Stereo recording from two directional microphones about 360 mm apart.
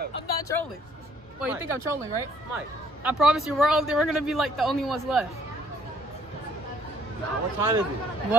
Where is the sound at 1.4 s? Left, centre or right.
Centre.